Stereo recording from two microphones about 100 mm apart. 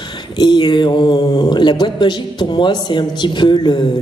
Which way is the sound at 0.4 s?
50° left (ahead or behind).